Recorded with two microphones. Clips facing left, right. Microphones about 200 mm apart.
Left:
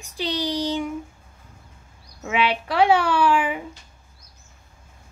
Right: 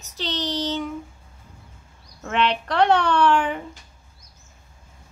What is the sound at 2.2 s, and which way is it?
A woman's voice, 5° left (ahead or behind).